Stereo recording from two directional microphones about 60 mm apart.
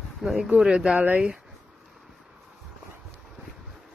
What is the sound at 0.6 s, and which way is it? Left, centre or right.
Speech, centre.